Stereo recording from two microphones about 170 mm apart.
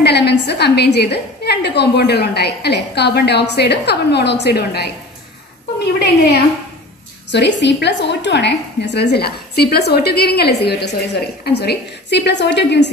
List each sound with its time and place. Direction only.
0.0 s a woman's voice: 80° left
7.2 s a woman's voice: 90° left